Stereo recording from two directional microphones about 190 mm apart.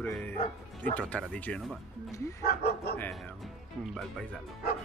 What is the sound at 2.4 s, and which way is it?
Speech, 55° left (ahead or behind).